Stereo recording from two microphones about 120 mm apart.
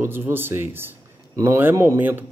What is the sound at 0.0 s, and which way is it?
A man's voice, 20° right (ahead or behind).